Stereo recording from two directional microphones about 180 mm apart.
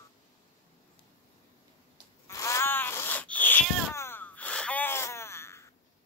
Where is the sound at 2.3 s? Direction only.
15° left (ahead or behind).